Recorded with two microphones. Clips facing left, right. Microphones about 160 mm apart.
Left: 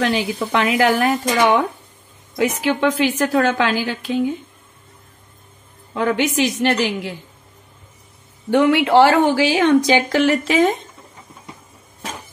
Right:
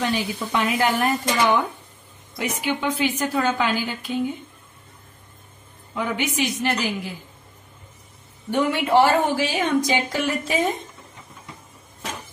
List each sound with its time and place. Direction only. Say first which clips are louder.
0.0 s a woman's voice: left 5 dB; 90° left
2.8 s a woman's voice: left 7 dB; 90° left
5.9 s a woman's voice: left 6 dB; 90° left
8.5 s a woman's voice: left 6 dB; 85° left